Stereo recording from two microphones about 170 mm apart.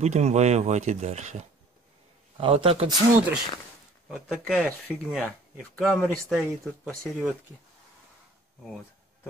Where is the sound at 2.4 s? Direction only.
30° right (ahead or behind).